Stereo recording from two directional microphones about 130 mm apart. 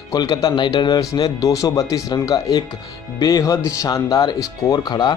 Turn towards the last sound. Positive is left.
turn(degrees=35)  # may be behind; listen again after turning